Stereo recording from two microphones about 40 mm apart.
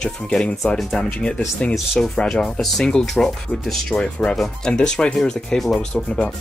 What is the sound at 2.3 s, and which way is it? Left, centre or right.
Speech, left.